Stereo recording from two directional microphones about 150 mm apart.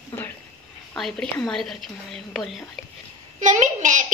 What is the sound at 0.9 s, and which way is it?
A woman's voice, 5° left (ahead or behind).